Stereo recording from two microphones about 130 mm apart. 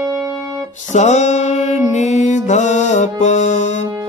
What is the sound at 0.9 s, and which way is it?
Music, 60° left (ahead or behind).